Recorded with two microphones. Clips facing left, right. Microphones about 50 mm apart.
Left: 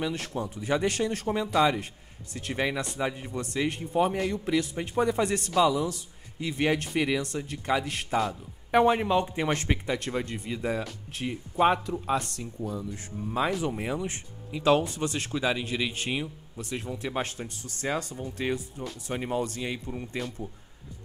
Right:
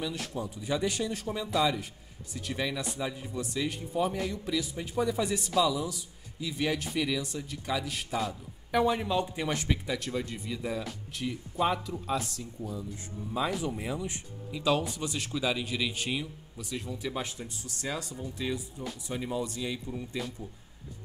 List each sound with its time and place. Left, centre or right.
0.0 s speech: left
16.6 s speech: left